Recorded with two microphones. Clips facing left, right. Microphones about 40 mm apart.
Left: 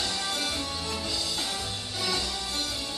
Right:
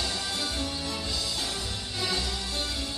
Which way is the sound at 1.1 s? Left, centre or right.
Left.